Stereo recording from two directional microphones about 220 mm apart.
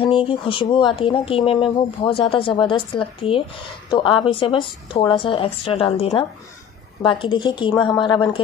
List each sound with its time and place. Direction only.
0.0 s speech: 25° left (ahead or behind)